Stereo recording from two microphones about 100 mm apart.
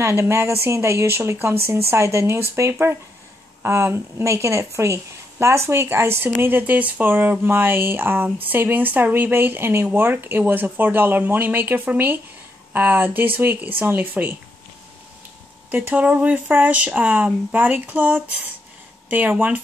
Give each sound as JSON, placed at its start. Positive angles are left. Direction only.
{"t": 0.0, "sound": "speech", "side_deg": -25}
{"t": 15.7, "sound": "speech", "side_deg": -15}